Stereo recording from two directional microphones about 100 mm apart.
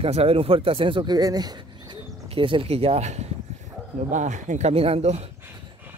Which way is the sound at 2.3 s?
65° right (ahead or behind).